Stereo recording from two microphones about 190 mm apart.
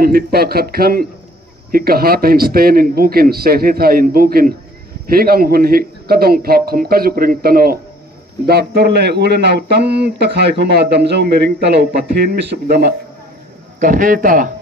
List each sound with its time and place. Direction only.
0.0 s a man's voice: 55° right (ahead or behind)
13.7 s a man's voice: 45° right (ahead or behind)